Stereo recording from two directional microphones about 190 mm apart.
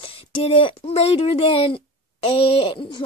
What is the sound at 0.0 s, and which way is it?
Speech, 30° left (ahead or behind).